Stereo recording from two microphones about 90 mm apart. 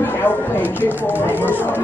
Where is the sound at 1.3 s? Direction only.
20° left (ahead or behind).